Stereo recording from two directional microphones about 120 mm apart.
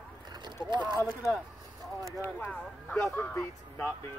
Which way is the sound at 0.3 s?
35° right (ahead or behind).